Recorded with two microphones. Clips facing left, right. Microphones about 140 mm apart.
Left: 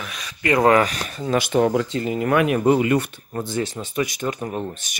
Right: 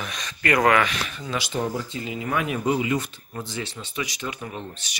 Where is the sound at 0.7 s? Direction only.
40° left (ahead or behind).